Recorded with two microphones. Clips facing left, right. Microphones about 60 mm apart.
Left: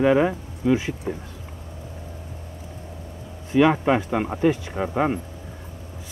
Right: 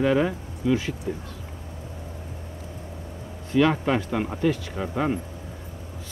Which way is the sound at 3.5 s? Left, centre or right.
Centre.